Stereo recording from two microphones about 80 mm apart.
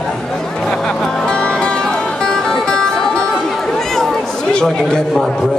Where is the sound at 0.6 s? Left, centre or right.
Centre.